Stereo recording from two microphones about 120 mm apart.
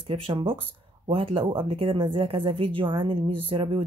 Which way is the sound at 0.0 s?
45° right (ahead or behind).